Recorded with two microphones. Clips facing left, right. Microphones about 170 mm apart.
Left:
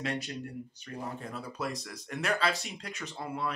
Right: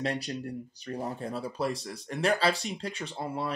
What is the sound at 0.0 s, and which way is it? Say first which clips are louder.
Speech: right 3 dB; 35° right (ahead or behind).